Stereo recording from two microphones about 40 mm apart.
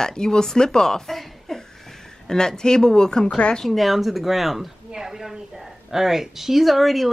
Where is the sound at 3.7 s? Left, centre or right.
Centre.